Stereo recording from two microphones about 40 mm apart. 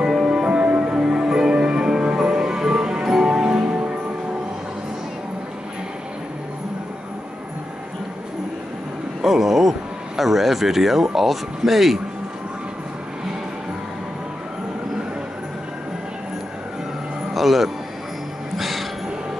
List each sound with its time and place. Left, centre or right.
0.0 s music: centre
0.5 s music: right
3.6 s music: right
9.2 s speech: centre
17.3 s music: centre
18.6 s a sound: centre